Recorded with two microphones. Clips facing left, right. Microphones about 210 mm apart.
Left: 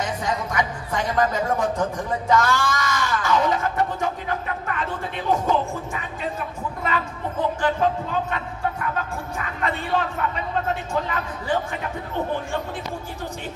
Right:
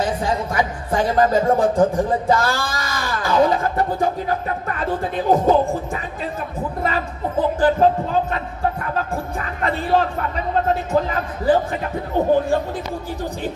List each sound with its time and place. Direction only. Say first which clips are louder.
0.0 s speech: right 5 dB; 30° right (ahead or behind)
6.8 s speech: right 3 dB; 35° right (ahead or behind)